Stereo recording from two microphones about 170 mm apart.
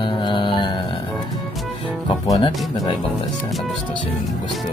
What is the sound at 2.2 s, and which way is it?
Speech, 20° left (ahead or behind).